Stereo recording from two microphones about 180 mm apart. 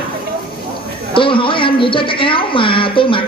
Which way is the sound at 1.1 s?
30° left (ahead or behind).